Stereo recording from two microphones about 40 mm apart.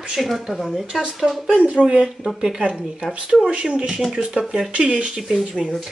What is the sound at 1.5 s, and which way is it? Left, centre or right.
Speech, right.